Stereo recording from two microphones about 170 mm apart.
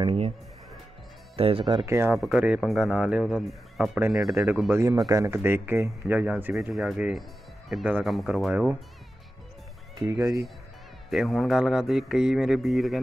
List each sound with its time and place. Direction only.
0.0 s speech: 35° right (ahead or behind)
1.3 s speech: 35° right (ahead or behind)
2.1 s a man's voice: centre (ahead or behind)
4.3 s a man's voice: 15° right (ahead or behind)
11.1 s a man's voice: centre (ahead or behind)